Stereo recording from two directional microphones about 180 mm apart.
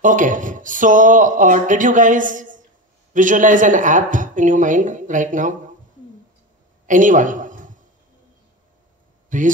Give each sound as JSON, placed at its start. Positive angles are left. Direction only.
{"t": 0.0, "sound": "speech", "side_deg": -45}
{"t": 6.9, "sound": "a man's voice", "side_deg": -45}
{"t": 9.3, "sound": "speech", "side_deg": -45}